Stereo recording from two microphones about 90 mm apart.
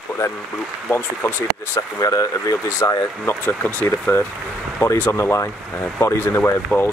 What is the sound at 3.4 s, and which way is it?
Speech, 20° left (ahead or behind).